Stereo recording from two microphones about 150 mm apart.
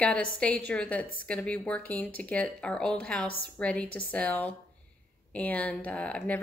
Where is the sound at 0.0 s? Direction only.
10° left (ahead or behind).